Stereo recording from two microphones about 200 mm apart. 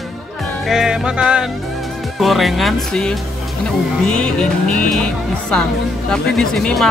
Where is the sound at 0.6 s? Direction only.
5° right (ahead or behind).